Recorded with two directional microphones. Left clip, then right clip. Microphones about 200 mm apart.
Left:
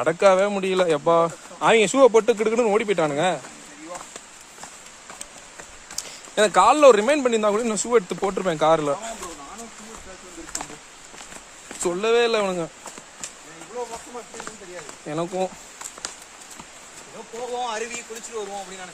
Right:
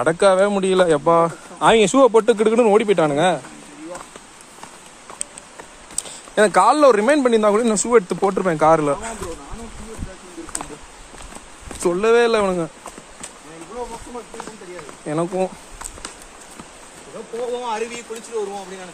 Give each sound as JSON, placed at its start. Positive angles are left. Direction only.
{"t": 0.0, "sound": "speech", "side_deg": -15}
{"t": 1.6, "sound": "speech", "side_deg": -15}
{"t": 6.0, "sound": "speech", "side_deg": -15}
{"t": 11.8, "sound": "speech", "side_deg": -20}
{"t": 15.0, "sound": "speech", "side_deg": -10}
{"t": 17.6, "sound": "speech", "side_deg": 0}